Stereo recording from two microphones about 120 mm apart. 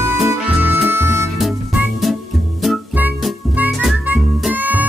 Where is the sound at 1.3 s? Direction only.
Centre (ahead or behind).